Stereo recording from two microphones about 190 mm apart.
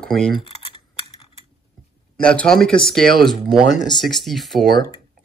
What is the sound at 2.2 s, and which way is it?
Speech, 5° left (ahead or behind).